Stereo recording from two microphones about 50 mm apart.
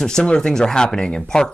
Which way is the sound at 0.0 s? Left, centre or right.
Centre.